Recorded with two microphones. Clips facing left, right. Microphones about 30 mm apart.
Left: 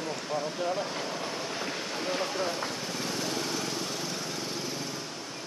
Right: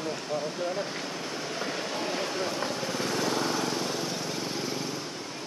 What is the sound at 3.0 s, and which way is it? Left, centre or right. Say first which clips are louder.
Lawn mower: right 5 dB; right.